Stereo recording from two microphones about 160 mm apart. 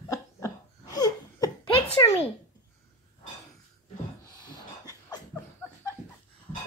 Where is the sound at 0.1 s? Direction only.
20° left (ahead or behind).